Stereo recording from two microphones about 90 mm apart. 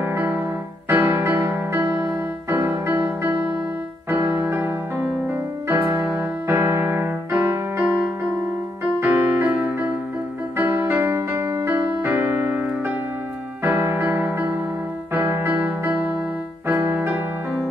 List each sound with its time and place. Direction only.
0.0 s music: 25° right (ahead or behind)
4.1 s electric piano: 20° right (ahead or behind)
5.7 s music: 25° right (ahead or behind)
9.0 s music: 25° right (ahead or behind)